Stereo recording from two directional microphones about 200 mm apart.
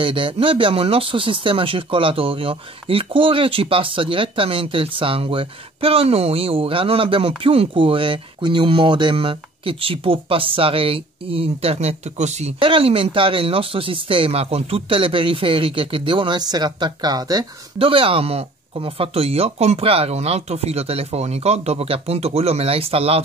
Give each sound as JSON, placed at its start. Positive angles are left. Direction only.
{"t": 0.0, "sound": "speech", "side_deg": -25}